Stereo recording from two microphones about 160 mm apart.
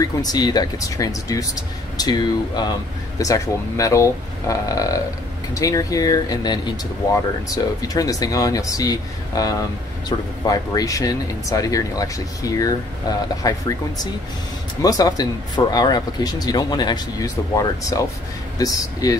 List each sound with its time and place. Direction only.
0.0 s speech: 25° left (ahead or behind)